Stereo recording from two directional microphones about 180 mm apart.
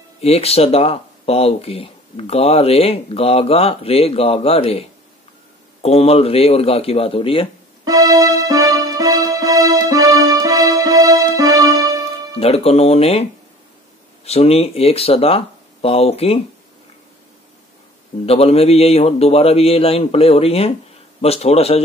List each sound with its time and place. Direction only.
0.2 s speech: 35° left (ahead or behind)
7.8 s music: 20° right (ahead or behind)
12.4 s speech: 35° left (ahead or behind)
18.2 s speech: 35° left (ahead or behind)